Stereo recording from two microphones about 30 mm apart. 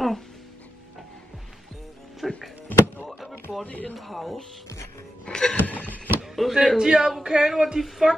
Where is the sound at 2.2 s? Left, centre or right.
Centre.